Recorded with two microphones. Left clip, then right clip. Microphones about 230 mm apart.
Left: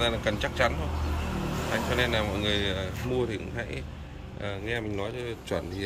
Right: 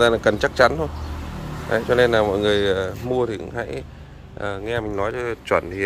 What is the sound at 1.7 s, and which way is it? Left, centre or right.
Speech, right.